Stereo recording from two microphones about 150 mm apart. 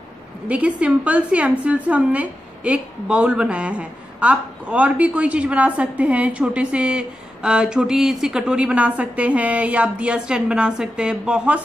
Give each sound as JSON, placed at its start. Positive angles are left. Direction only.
{"t": 0.5, "sound": "a woman's voice", "side_deg": -10}